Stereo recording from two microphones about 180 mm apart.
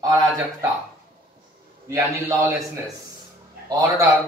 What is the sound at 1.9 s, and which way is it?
Speech, 15° right (ahead or behind).